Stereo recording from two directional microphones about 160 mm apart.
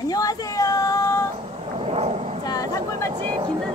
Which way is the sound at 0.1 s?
20° left (ahead or behind).